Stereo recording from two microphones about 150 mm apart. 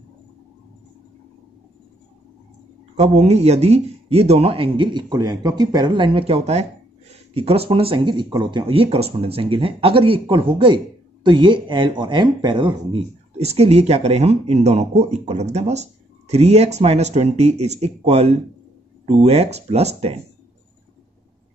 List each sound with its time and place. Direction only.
3.0 s speech: 45° right (ahead or behind)
13.4 s speech: 45° right (ahead or behind)